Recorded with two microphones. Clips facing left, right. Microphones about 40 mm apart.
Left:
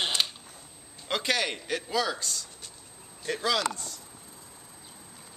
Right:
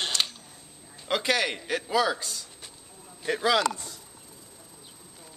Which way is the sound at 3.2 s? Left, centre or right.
Centre.